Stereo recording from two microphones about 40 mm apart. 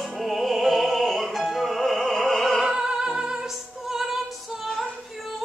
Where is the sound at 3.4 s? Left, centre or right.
Centre.